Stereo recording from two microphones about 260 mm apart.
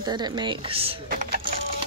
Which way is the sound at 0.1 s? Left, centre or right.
Centre.